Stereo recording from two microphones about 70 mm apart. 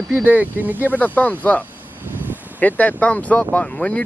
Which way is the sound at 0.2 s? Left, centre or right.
Right.